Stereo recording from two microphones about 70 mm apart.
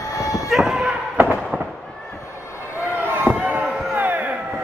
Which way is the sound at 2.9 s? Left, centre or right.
Right.